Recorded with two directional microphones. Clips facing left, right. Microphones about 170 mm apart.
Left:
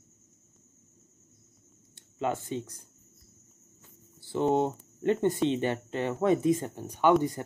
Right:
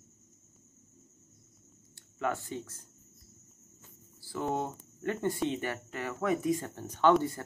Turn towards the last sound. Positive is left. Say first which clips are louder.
# left 2 dB
turn(degrees=15)  # may be behind; listen again after turning